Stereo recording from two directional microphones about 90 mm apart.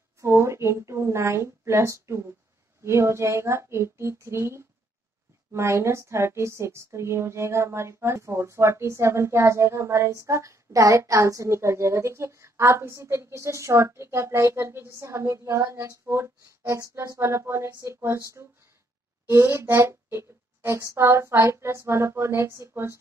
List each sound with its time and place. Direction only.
0.2 s a woman's voice: 30° right (ahead or behind)
17.2 s speech: 30° right (ahead or behind)
19.2 s speech: 25° right (ahead or behind)